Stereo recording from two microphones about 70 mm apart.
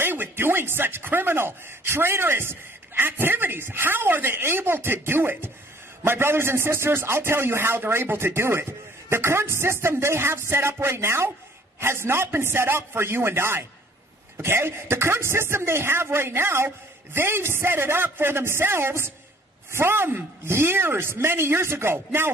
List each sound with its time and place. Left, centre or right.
0.0 s speech: right